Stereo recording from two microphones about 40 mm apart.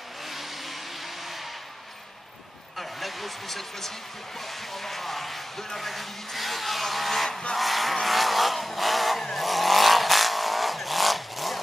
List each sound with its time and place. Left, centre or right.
2.8 s a sound: centre
4.7 s speech: centre
9.2 s vehicle: centre